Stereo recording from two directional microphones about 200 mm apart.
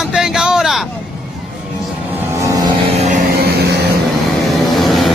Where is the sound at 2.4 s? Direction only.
15° right (ahead or behind).